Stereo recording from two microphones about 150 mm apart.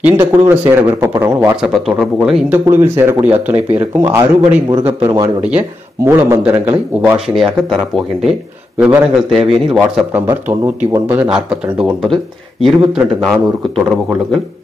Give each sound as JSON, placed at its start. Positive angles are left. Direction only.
{"t": 0.0, "sound": "speech", "side_deg": -15}
{"t": 1.6, "sound": "speech", "side_deg": -5}
{"t": 2.5, "sound": "speech", "side_deg": -15}
{"t": 5.0, "sound": "speech", "side_deg": -25}
{"t": 5.4, "sound": "speech", "side_deg": -10}
{"t": 8.7, "sound": "speech", "side_deg": -5}
{"t": 10.8, "sound": "speech", "side_deg": -15}